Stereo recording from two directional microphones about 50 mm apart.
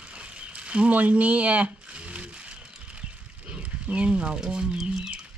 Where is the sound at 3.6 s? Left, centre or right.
Right.